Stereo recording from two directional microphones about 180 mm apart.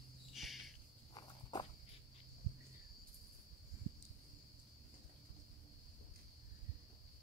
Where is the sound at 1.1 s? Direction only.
25° left (ahead or behind).